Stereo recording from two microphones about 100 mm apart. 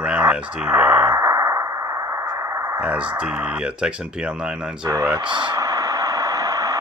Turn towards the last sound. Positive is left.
turn(degrees=-35)  # may be behind; listen again after turning